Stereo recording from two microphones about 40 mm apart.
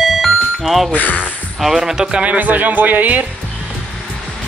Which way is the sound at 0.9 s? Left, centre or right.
Left.